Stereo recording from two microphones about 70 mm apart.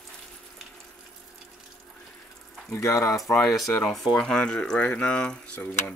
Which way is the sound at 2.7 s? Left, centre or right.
Left.